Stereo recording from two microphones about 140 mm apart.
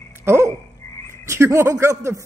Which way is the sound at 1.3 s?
20° right (ahead or behind).